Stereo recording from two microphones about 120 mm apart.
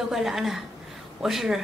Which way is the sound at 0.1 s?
Centre (ahead or behind).